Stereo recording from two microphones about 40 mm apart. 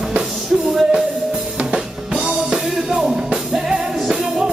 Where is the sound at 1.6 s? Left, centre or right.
Centre.